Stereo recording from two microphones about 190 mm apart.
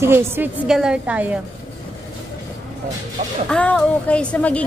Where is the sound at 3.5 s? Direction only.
5° left (ahead or behind).